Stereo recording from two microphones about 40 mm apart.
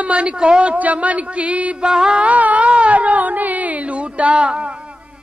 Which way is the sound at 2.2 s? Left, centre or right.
Right.